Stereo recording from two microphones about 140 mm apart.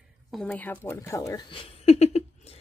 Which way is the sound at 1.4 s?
40° left (ahead or behind).